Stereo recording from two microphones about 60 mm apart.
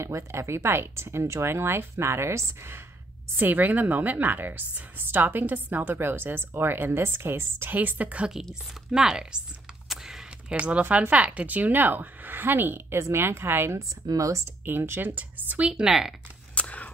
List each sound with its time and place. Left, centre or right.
0.0 s speech: right
3.3 s a woman's voice: right
7.7 s a woman's voice: right
8.9 s a woman's voice: centre
9.8 s a sound: centre
10.6 s a woman's voice: right
13.7 s speech: right
14.6 s a woman's voice: right
15.6 s a woman's voice: centre
16.5 s a sound: left